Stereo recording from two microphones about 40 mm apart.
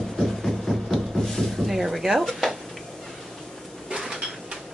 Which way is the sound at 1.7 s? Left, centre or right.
Centre.